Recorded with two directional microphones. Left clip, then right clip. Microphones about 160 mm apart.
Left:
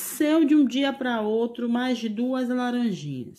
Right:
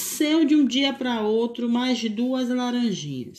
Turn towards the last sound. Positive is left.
turn(degrees=15)  # may be behind; listen again after turning